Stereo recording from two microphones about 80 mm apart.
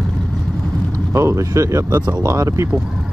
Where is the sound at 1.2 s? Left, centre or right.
Right.